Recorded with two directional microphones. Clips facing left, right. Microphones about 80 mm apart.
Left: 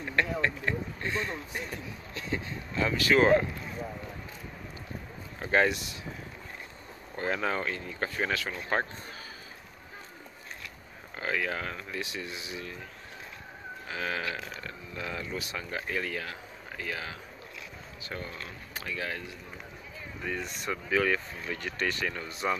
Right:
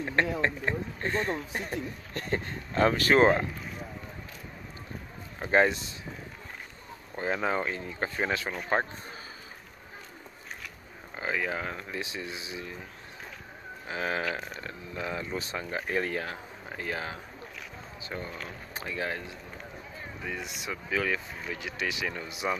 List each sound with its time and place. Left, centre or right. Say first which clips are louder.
0.0 s a sound: right 2 dB; right
1.0 s speech: right 5 dB; right
1.6 s speech: right 4 dB; right
5.4 s speech: right 2 dB; right
7.2 s speech: right 1 dB; centre
11.1 s speech: even; centre
13.8 s speech: right 3 dB; right
18.0 s speech: right 1 dB; right
20.2 s speech: left 3 dB; centre